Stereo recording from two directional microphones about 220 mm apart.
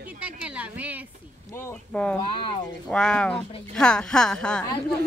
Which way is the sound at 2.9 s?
5° left (ahead or behind).